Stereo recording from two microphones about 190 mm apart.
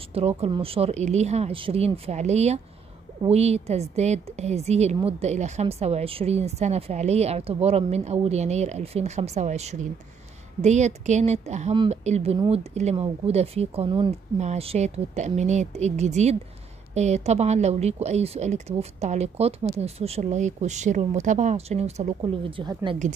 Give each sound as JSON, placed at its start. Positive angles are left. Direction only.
{"t": 0.1, "sound": "a woman's voice", "side_deg": -30}